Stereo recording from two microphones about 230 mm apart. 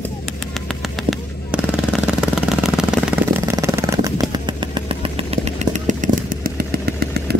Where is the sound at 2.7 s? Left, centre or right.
Centre.